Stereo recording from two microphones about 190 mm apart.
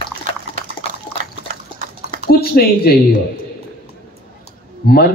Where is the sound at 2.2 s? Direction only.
55° left (ahead or behind).